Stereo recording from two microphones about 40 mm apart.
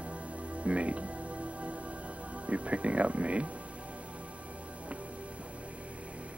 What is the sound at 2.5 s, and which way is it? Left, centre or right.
Speech, right.